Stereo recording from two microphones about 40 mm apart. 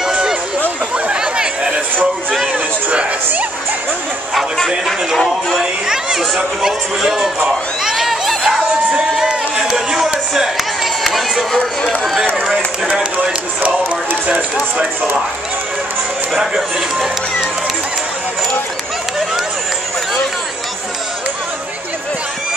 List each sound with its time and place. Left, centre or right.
0.1 s run: centre
0.9 s chatter: right
2.4 s a sound: right
4.6 s speech: centre
5.6 s a sound: centre
6.1 s crowd: centre
8.5 s crowd: right
9.7 s a sound: centre
11.1 s a sound: centre
12.0 s run: centre
13.2 s music: right
14.2 s run: right